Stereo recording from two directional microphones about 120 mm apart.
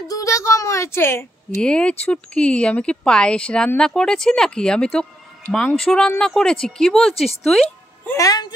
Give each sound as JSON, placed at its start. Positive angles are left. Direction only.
{"t": 0.1, "sound": "speech", "side_deg": 25}
{"t": 1.6, "sound": "speech", "side_deg": 10}
{"t": 7.6, "sound": "music", "side_deg": 15}
{"t": 8.2, "sound": "speech", "side_deg": 30}